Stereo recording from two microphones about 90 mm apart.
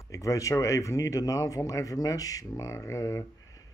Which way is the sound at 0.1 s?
35° left (ahead or behind).